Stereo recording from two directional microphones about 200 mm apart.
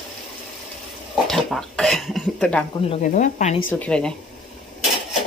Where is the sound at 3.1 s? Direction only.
40° left (ahead or behind).